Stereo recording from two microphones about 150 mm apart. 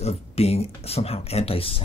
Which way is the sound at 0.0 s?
45° left (ahead or behind).